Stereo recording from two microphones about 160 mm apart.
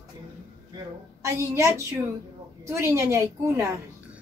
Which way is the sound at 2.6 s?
15° right (ahead or behind).